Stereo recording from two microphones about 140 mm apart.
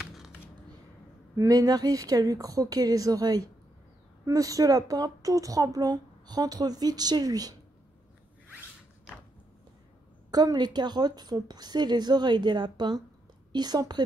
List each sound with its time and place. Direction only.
0.0 s a sound: 5° right (ahead or behind)
1.3 s speech: 25° right (ahead or behind)
10.3 s speech: 30° right (ahead or behind)